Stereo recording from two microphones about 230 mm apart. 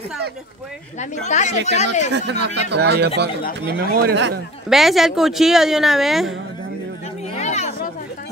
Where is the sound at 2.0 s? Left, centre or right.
Right.